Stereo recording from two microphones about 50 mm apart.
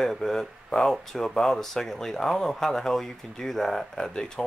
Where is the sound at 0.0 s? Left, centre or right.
Centre.